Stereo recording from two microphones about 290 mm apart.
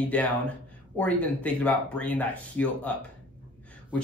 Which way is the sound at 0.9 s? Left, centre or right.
Centre.